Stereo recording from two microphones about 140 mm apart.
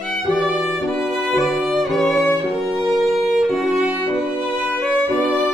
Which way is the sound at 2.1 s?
20° left (ahead or behind).